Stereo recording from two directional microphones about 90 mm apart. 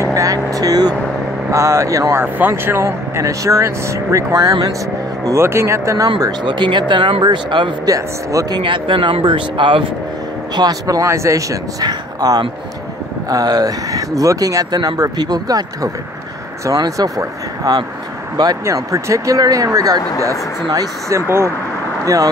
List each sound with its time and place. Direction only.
0.0 s speech: 40° right (ahead or behind)
1.5 s speech: 35° right (ahead or behind)
6.0 s speech: 50° right (ahead or behind)
7.8 s speech: 40° right (ahead or behind)
8.5 s speech: 65° right (ahead or behind)
10.5 s speech: 45° right (ahead or behind)
11.9 s speech: 50° right (ahead or behind)